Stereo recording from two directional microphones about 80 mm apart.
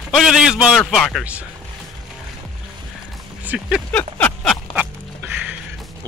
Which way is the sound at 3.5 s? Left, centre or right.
Centre.